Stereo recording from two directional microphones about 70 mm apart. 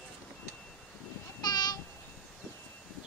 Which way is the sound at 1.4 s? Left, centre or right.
Left.